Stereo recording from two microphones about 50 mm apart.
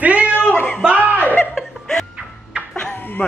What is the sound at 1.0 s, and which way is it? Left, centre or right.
Chuckle, right.